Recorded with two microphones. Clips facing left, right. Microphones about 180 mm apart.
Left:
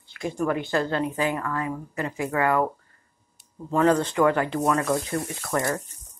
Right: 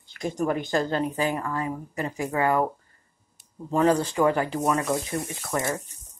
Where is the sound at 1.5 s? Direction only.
30° right (ahead or behind).